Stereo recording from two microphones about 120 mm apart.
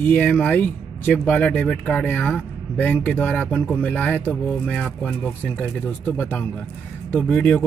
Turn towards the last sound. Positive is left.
turn(degrees=10)  # may be behind; listen again after turning